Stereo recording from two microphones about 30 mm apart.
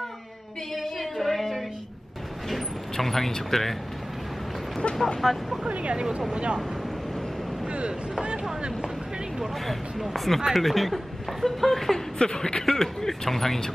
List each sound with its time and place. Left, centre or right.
0.8 s a sound: centre
3.4 s speech: centre
4.8 s speech: left
5.2 s speech: centre
5.7 s speech: right
6.3 s speech: right
7.6 s speech: right
9.7 s speech: centre
12.2 s speech: left
12.6 s speech: centre